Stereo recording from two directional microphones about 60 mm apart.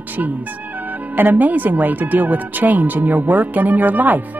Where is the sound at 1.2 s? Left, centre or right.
Right.